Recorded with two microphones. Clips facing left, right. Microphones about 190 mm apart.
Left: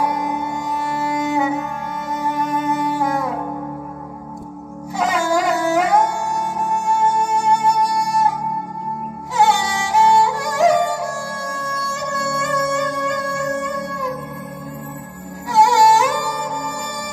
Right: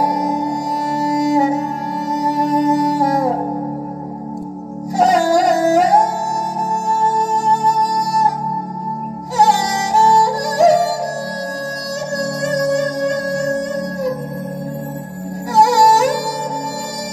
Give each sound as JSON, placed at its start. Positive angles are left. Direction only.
{"t": 0.0, "sound": "music", "side_deg": -40}
{"t": 4.9, "sound": "music", "side_deg": -40}
{"t": 9.4, "sound": "music", "side_deg": -40}
{"t": 15.5, "sound": "music", "side_deg": -40}